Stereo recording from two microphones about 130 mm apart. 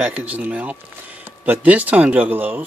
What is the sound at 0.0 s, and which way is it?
Speech, 10° right (ahead or behind).